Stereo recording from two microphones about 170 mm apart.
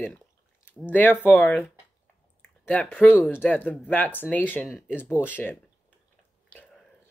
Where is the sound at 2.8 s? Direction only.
Centre (ahead or behind).